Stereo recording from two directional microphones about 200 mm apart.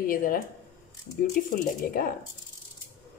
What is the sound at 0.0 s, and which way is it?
Speech, 45° left (ahead or behind).